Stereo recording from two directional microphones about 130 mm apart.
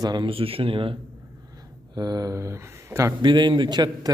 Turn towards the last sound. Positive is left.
turn(degrees=-35)  # may be behind; listen again after turning